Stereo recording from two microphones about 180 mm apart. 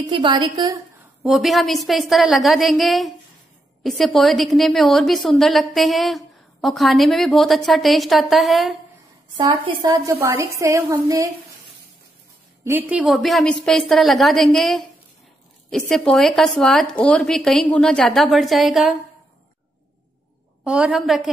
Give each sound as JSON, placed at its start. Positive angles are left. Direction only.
{"t": 0.1, "sound": "a woman's voice", "side_deg": -25}
{"t": 0.9, "sound": "a woman's voice", "side_deg": 0}
{"t": 9.4, "sound": "a woman's voice", "side_deg": -30}
{"t": 12.6, "sound": "a woman's voice", "side_deg": -10}
{"t": 15.9, "sound": "a woman's voice", "side_deg": 5}
{"t": 20.6, "sound": "a woman's voice", "side_deg": -5}